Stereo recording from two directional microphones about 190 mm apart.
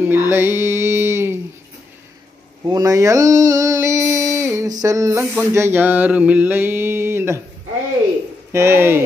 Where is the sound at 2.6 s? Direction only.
20° right (ahead or behind).